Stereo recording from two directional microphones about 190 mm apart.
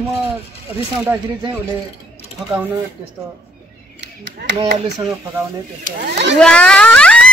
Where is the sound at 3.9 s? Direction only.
65° right (ahead or behind).